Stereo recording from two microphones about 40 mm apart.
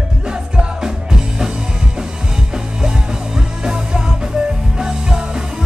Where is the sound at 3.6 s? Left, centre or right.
Centre.